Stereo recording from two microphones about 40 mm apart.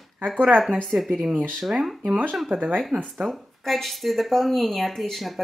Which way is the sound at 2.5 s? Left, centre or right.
Right.